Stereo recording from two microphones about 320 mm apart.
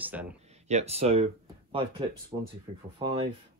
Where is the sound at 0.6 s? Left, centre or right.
Centre.